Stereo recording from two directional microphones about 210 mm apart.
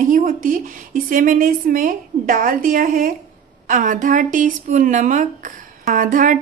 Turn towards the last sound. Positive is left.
turn(degrees=-40)  # may be behind; listen again after turning